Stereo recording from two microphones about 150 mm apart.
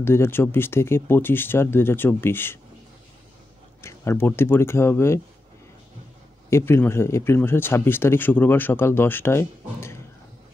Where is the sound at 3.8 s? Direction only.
15° left (ahead or behind).